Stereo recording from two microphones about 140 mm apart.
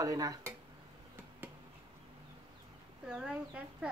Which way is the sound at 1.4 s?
15° right (ahead or behind).